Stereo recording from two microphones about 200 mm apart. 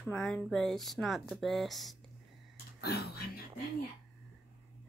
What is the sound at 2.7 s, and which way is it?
Speech, 50° left (ahead or behind).